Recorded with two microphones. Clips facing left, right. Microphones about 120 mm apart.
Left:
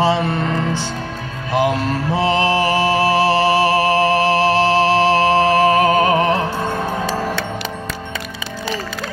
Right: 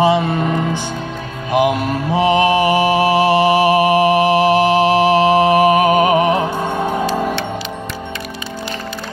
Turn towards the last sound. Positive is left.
turn(degrees=-15)  # may be behind; listen again after turning